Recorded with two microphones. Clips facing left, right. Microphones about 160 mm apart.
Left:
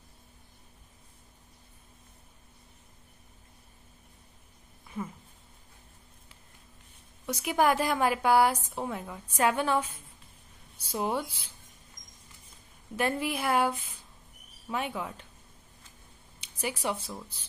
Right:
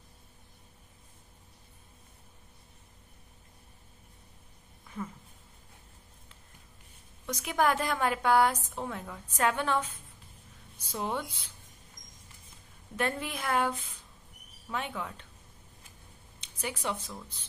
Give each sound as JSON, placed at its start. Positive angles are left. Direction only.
{"t": 7.2, "sound": "a woman's voice", "side_deg": 10}
{"t": 12.9, "sound": "a woman's voice", "side_deg": 10}
{"t": 16.3, "sound": "speech", "side_deg": 10}